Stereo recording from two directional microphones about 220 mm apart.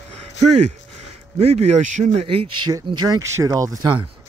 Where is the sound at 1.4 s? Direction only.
30° right (ahead or behind).